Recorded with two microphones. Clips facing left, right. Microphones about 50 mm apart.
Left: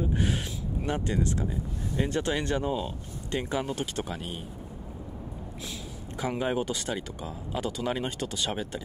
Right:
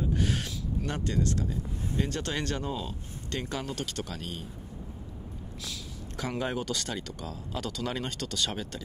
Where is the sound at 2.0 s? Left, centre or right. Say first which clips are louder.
Left 4 dB; centre.